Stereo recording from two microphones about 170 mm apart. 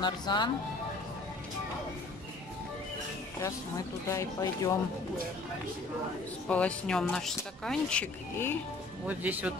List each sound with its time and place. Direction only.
0.0 s speech: 25° left (ahead or behind)
3.3 s speech: 20° left (ahead or behind)
6.5 s speech: 5° left (ahead or behind)
9.0 s speech: 10° right (ahead or behind)